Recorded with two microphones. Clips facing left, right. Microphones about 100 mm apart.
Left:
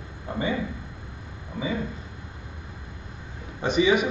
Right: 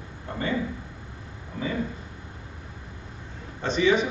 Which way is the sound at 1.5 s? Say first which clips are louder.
Left 1 dB; 5° left (ahead or behind).